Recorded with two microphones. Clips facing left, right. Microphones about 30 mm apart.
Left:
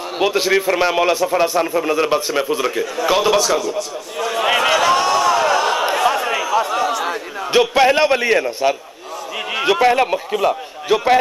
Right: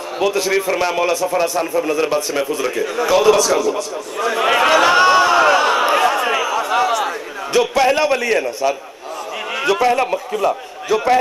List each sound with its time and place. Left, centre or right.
0.2 s a man's voice: left; by 4.6 s centre
4.6 s a sound: centre
4.8 s a sound: right; by 7.1 s centre
7.1 s a man's voice: centre
8.5 s a man's voice: left
9.5 s a man's voice: centre